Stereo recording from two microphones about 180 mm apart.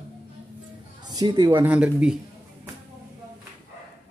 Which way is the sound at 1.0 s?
25° right (ahead or behind).